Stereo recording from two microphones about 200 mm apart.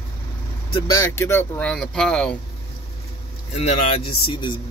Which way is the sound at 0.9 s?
15° left (ahead or behind).